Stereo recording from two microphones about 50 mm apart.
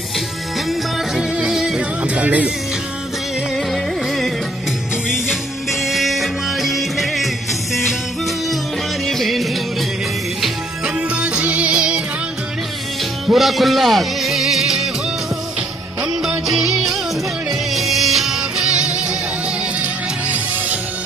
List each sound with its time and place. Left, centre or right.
1.3 s yodeling: centre
1.8 s music: right
3.7 s music: centre
9.0 s music: centre
11.0 s music: right
13.3 s music: centre
16.1 s music: centre
19.8 s music: right